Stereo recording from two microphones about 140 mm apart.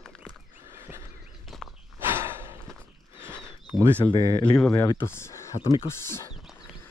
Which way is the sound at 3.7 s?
15° right (ahead or behind).